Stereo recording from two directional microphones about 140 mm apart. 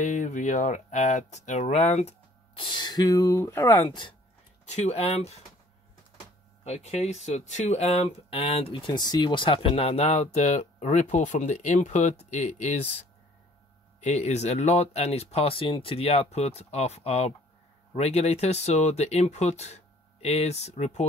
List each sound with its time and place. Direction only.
0.0 s speech: 60° left (ahead or behind)
2.6 s speech: 30° left (ahead or behind)
3.8 s speech: 35° left (ahead or behind)
4.6 s speech: 50° left (ahead or behind)
6.6 s speech: 50° left (ahead or behind)
14.0 s speech: 55° left (ahead or behind)